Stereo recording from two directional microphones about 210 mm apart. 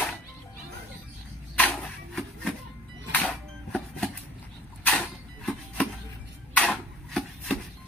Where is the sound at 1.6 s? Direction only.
5° left (ahead or behind).